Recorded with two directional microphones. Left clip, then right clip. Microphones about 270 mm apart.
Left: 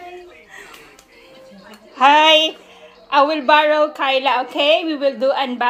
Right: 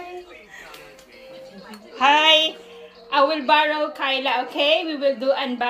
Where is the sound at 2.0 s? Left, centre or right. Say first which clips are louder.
Left 4 dB; centre.